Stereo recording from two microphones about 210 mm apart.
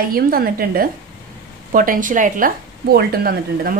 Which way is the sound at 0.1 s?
45° right (ahead or behind).